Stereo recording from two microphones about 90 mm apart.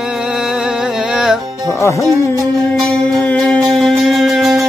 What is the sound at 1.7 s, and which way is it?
Music, 35° left (ahead or behind).